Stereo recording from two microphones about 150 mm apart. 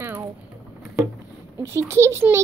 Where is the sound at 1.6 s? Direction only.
15° right (ahead or behind).